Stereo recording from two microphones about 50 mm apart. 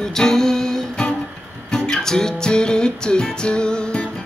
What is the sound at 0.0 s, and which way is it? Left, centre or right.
Music, centre.